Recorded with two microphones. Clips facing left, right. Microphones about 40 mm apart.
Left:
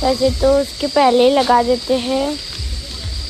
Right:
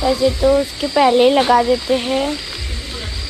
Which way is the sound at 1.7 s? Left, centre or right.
Right.